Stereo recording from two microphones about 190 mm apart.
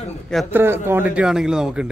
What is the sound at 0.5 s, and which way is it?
A man's voice, 10° right (ahead or behind).